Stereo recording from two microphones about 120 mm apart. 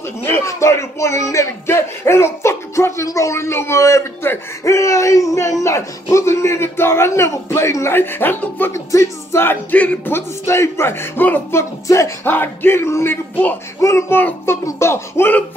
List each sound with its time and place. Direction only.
0.3 s speech: 25° left (ahead or behind)